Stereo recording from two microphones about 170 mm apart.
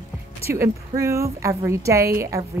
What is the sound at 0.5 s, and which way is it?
A woman's voice, 15° right (ahead or behind).